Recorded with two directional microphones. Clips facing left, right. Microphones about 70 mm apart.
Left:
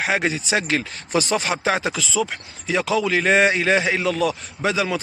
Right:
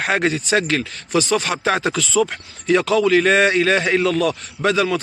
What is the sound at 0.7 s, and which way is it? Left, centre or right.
Speech, centre.